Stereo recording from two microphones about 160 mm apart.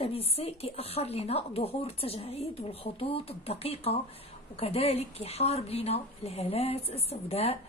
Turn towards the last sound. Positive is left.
turn(degrees=40)  # may be behind; listen again after turning